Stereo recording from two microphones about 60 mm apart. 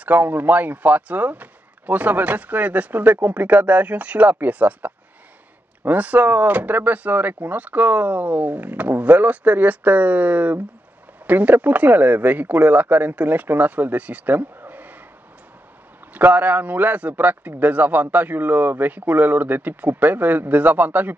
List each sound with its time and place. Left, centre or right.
0.0 s speech: right
16.1 s speech: right